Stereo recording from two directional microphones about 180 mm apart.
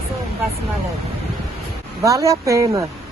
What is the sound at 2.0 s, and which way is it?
Speech, 15° right (ahead or behind).